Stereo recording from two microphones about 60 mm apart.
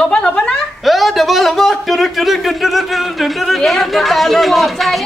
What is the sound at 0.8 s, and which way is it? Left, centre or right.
A man's voice, centre.